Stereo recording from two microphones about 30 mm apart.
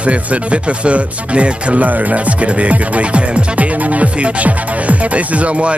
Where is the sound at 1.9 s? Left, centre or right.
Right.